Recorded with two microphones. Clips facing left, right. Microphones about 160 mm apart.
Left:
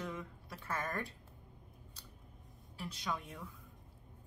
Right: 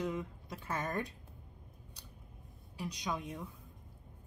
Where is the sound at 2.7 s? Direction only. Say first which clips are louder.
Right 2 dB; 15° right (ahead or behind).